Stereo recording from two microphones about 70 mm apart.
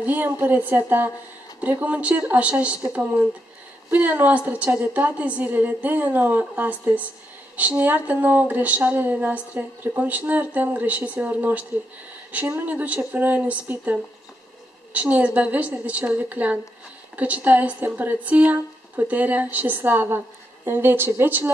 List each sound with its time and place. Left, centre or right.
0.0 s speech: right